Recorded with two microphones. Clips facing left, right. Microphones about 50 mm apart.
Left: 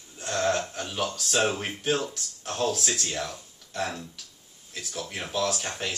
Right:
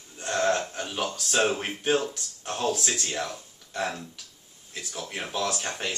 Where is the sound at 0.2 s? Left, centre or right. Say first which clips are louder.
Right 1 dB; centre.